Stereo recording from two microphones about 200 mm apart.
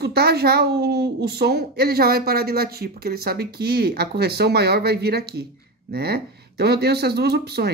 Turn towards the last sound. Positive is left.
turn(degrees=-55)  # may be behind; listen again after turning